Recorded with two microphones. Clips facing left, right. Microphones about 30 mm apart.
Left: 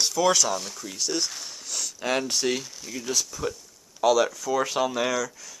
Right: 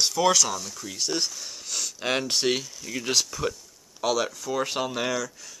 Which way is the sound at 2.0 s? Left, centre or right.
Right.